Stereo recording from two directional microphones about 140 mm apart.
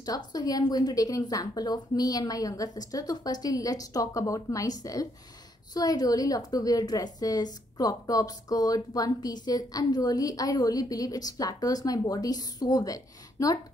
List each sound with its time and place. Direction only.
0.0 s a woman's voice: 30° left (ahead or behind)